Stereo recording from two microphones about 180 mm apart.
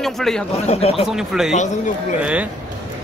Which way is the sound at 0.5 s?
35° left (ahead or behind).